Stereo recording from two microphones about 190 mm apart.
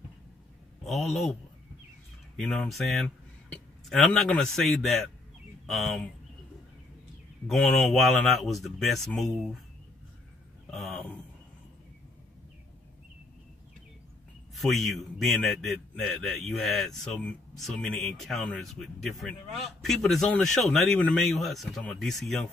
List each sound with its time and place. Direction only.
0.8 s a man's voice: centre (ahead or behind)
2.3 s a man's voice: 5° left (ahead or behind)
7.4 s a man's voice: centre (ahead or behind)
10.7 s a sound: centre (ahead or behind)
14.5 s a man's voice: centre (ahead or behind)